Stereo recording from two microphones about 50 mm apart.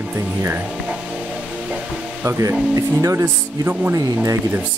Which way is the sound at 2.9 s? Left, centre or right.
Right.